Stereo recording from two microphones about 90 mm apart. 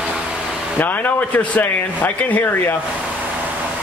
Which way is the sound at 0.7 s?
20° left (ahead or behind).